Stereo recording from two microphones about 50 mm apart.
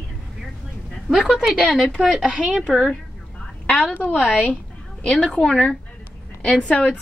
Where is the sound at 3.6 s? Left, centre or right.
Left.